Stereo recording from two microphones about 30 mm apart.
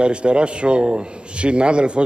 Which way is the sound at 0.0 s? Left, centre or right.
Right.